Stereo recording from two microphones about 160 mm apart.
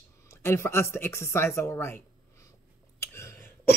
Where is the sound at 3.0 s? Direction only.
15° left (ahead or behind).